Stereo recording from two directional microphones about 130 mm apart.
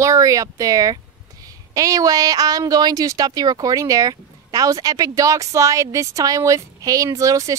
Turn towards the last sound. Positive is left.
turn(degrees=-25)  # may be behind; listen again after turning